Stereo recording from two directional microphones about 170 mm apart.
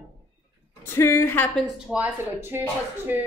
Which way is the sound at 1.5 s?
5° right (ahead or behind).